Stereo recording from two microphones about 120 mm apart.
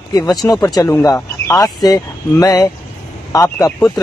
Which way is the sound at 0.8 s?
20° left (ahead or behind).